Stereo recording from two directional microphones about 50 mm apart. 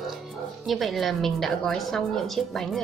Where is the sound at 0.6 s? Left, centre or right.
Centre.